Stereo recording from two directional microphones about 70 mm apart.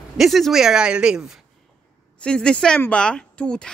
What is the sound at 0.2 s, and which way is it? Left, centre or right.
Speech, centre.